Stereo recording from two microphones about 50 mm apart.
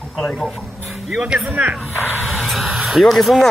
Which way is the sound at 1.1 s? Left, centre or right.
Right.